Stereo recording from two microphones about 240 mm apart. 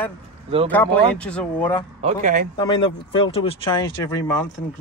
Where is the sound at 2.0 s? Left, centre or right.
Right.